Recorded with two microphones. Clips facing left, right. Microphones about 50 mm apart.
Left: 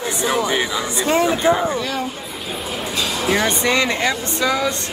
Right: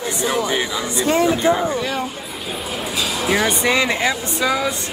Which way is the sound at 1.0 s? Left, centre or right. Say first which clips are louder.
Right 1 dB; left.